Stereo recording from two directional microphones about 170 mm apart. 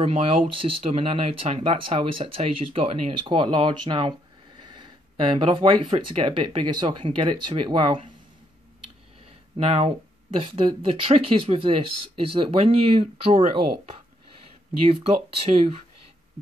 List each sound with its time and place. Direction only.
0.0 s speech: 35° right (ahead or behind)
9.6 s speech: 35° right (ahead or behind)
15.4 s speech: 35° right (ahead or behind)